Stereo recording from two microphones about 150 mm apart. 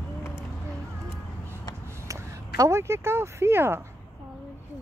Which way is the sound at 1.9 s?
15° right (ahead or behind).